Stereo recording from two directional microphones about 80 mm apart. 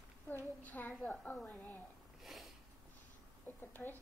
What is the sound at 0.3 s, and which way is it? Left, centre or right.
A woman's voice, left.